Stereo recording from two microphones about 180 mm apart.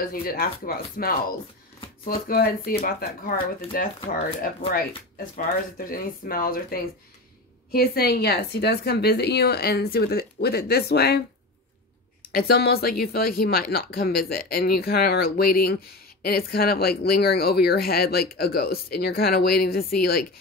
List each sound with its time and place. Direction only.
0.0 s speech: 55° left (ahead or behind)
12.3 s speech: 60° left (ahead or behind)